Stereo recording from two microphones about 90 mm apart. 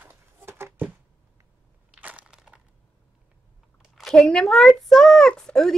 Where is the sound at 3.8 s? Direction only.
5° right (ahead or behind).